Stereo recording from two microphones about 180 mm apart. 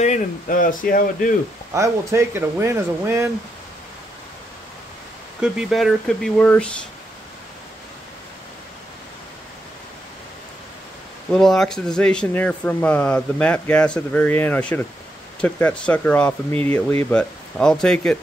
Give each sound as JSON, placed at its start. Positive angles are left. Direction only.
{"t": 0.0, "sound": "speech", "side_deg": 45}
{"t": 1.7, "sound": "speech", "side_deg": -15}
{"t": 5.4, "sound": "speech", "side_deg": -5}
{"t": 11.3, "sound": "speech", "side_deg": 0}